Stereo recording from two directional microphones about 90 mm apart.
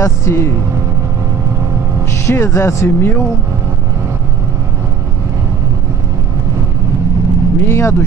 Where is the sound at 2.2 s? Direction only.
30° left (ahead or behind).